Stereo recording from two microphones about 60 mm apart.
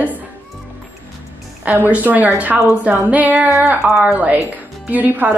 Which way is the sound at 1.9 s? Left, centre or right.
Right.